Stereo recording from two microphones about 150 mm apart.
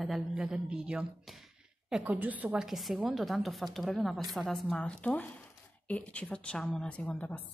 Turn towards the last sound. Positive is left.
turn(degrees=10)  # may be behind; listen again after turning